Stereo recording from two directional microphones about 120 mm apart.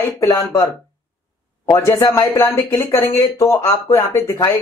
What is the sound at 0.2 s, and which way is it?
Speech, 25° left (ahead or behind).